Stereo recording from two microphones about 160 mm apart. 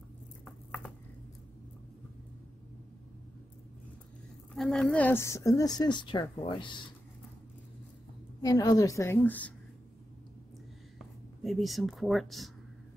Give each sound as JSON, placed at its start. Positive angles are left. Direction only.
{"t": 4.6, "sound": "a woman's voice", "side_deg": 5}
{"t": 8.4, "sound": "a woman's voice", "side_deg": 25}
{"t": 11.4, "sound": "speech", "side_deg": 0}